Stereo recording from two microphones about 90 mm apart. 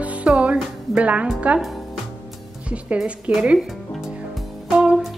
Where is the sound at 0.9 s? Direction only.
15° right (ahead or behind).